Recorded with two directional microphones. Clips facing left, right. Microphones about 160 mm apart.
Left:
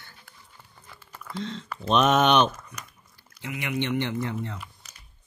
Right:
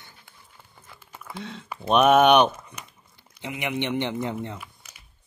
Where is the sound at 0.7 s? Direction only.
10° right (ahead or behind).